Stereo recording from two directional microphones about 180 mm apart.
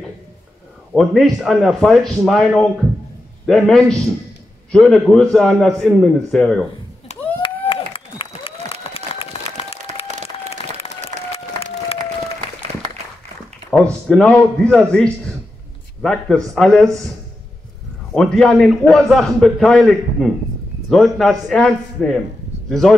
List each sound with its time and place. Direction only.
0.9 s a man's voice: centre (ahead or behind)
7.1 s a sound: 35° left (ahead or behind)
10.0 s applause: 40° right (ahead or behind)
14.0 s a man's voice: 5° left (ahead or behind)
18.1 s a man's voice: 5° left (ahead or behind)